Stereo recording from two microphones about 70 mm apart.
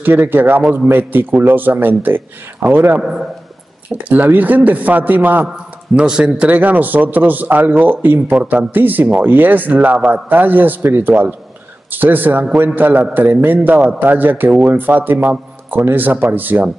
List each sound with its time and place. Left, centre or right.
0.0 s a man's voice: right
3.0 s a man's voice: centre
3.9 s a man's voice: right
5.9 s a man's voice: centre